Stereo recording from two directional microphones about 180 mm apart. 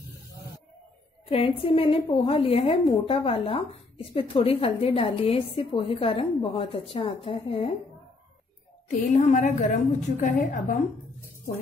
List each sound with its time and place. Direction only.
1.3 s speech: 30° left (ahead or behind)
8.8 s speech: 40° left (ahead or behind)